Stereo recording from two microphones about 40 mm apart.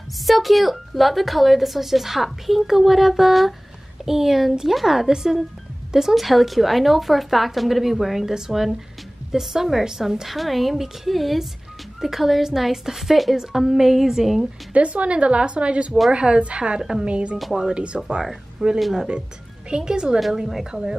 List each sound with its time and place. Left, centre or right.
0.3 s a woman's voice: centre
14.7 s speech: right
18.8 s a woman's voice: centre
19.7 s a woman's voice: centre